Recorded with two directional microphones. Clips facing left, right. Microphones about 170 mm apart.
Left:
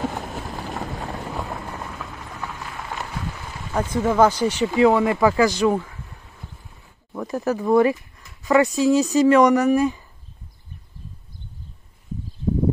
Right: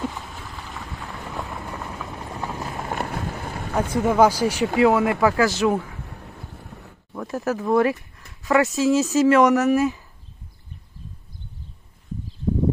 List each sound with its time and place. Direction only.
0.1 s vehicle: 45° left (ahead or behind)
2.1 s clip-clop: 30° right (ahead or behind)
2.9 s rain on surface: 50° right (ahead or behind)
3.4 s a sound: 55° right (ahead or behind)
3.7 s speech: 10° right (ahead or behind)
6.0 s boat: 65° right (ahead or behind)
7.1 s speech: centre (ahead or behind)